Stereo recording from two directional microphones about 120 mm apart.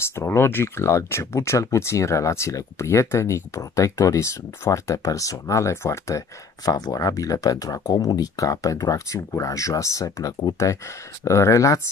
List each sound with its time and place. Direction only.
0.2 s speech: 20° left (ahead or behind)